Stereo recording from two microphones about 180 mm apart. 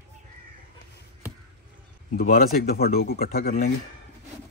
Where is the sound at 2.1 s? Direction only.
55° left (ahead or behind).